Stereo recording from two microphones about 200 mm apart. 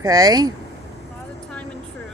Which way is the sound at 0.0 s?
15° right (ahead or behind).